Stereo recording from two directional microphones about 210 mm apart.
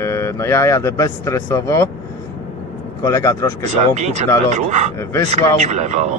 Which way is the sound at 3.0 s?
15° left (ahead or behind).